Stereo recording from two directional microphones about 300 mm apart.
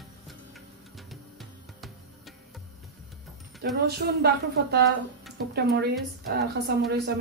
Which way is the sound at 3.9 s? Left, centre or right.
Right.